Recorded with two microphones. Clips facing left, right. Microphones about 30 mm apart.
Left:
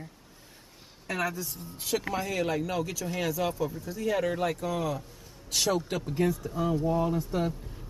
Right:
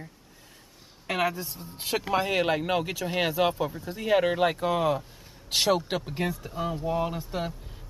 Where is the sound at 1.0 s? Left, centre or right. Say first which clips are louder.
Right 4 dB; right.